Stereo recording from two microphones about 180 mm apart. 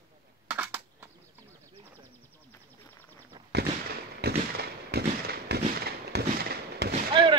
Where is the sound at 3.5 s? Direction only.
65° right (ahead or behind).